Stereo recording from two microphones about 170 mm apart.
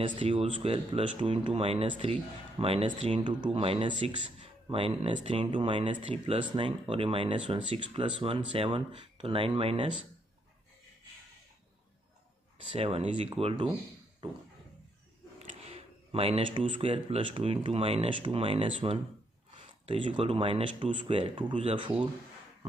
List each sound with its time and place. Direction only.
0.0 s speech: 30° right (ahead or behind)
12.7 s speech: 35° right (ahead or behind)